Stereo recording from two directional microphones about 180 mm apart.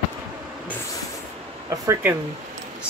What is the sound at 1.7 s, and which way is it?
Speech, 15° right (ahead or behind).